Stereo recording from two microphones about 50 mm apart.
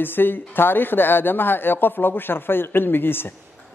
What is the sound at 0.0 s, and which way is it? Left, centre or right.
A man's voice, left.